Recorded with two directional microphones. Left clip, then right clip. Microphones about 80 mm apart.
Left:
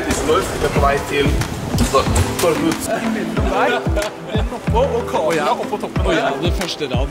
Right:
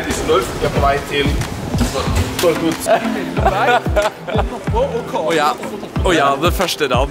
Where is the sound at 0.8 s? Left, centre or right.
Centre.